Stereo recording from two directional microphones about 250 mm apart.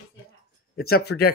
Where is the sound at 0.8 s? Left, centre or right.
Left.